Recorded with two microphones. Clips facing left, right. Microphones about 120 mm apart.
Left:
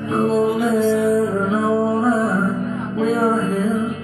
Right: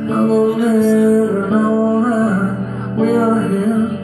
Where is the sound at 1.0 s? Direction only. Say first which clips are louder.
Right 5 dB; centre (ahead or behind).